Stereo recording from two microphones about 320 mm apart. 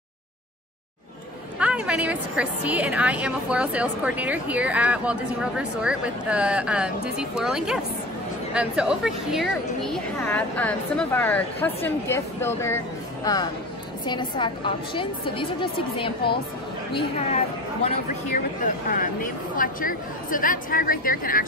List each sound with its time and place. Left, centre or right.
1.6 s a woman's voice: centre
17.8 s a woman's voice: left